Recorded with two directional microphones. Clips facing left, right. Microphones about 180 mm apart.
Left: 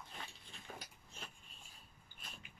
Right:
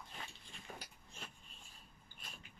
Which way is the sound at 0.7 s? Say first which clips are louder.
Even; centre (ahead or behind).